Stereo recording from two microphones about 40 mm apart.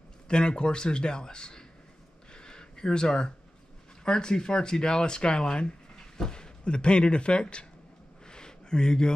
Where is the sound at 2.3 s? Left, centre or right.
Centre.